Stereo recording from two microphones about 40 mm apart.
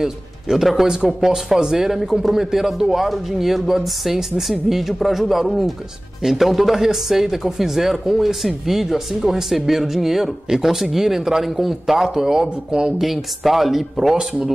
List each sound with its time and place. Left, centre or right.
0.0 s speech: centre
13.0 s speech: centre